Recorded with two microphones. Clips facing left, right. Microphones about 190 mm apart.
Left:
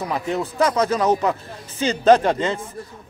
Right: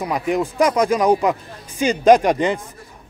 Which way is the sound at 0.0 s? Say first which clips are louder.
Right 3 dB; 15° right (ahead or behind).